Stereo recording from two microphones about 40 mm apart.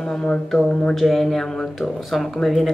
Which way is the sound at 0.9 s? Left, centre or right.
Centre.